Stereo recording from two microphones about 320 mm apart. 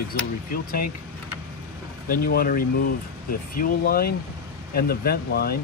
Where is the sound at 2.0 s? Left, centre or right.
Left.